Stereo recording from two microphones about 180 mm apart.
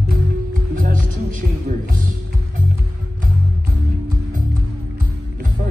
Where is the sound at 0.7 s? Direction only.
50° right (ahead or behind).